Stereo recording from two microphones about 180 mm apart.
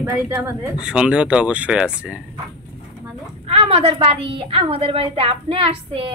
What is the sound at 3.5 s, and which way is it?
A woman's voice, 35° right (ahead or behind).